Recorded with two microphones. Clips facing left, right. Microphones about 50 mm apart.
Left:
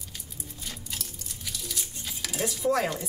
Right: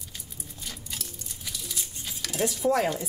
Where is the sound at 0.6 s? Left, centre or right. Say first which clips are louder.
Even; centre.